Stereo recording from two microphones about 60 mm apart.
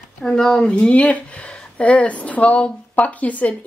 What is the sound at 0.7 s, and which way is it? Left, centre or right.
A woman's voice, centre.